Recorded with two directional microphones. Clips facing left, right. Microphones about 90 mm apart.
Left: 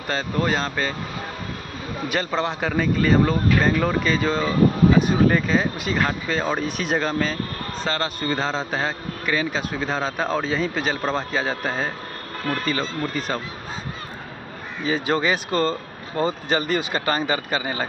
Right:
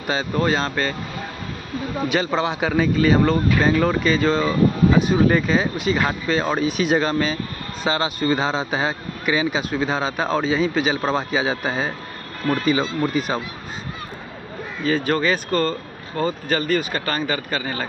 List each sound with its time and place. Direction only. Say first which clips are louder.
0.0 s a man's voice: right 2 dB; 5° right (ahead or behind)
2.0 s a man's voice: right 2 dB; centre (ahead or behind)
14.9 s speech: right 2 dB; 15° left (ahead or behind)